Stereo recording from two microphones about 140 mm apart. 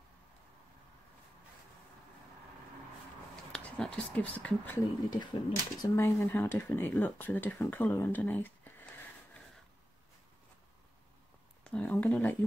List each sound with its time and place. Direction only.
3.5 s speech: 5° left (ahead or behind)
5.1 s speech: 30° left (ahead or behind)
5.9 s speech: 15° left (ahead or behind)
11.6 s a sound: 10° left (ahead or behind)